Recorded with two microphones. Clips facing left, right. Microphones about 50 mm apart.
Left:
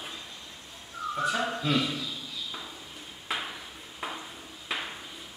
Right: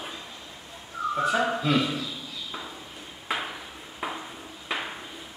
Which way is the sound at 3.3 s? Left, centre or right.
Centre.